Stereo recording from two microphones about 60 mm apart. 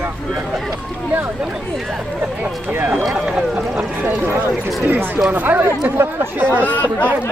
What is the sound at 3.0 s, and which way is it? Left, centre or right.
Speech, centre.